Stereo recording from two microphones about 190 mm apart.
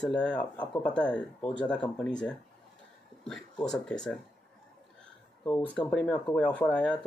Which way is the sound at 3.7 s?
5° left (ahead or behind).